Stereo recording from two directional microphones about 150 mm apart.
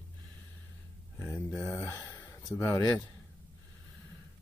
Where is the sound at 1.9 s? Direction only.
25° left (ahead or behind).